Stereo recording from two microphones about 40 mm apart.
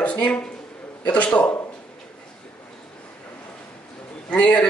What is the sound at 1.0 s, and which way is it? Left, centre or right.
Speech, left.